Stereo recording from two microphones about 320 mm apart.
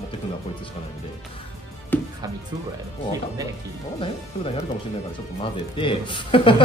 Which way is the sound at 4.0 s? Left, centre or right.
Centre.